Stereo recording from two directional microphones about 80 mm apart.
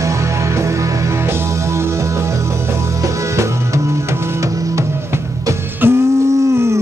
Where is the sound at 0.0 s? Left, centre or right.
Right.